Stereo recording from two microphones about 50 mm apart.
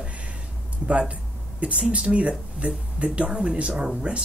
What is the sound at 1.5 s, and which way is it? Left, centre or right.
Speech, right.